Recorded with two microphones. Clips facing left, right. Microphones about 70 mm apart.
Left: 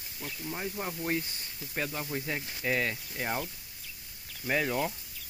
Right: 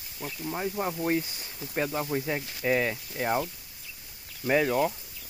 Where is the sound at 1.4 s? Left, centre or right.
Right.